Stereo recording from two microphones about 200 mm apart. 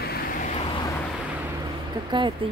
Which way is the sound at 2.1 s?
25° right (ahead or behind).